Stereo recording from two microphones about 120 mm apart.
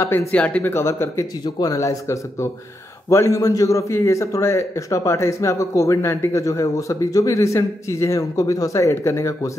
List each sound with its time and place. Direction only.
0.0 s a man's voice: 25° left (ahead or behind)
0.3 s a man's voice: 10° left (ahead or behind)